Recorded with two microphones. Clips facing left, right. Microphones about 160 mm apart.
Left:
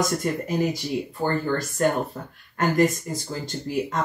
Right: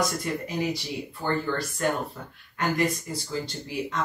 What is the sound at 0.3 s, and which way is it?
A woman's voice, 45° left (ahead or behind).